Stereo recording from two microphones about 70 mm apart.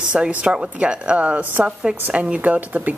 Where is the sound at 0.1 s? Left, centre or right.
Centre.